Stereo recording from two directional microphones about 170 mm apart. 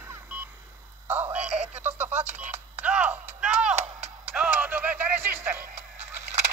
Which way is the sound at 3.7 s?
40° right (ahead or behind).